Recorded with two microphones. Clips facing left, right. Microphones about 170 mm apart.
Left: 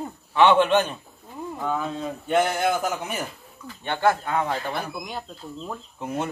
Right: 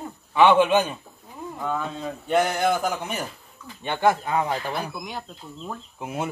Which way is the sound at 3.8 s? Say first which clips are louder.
Right 1 dB; 15° right (ahead or behind).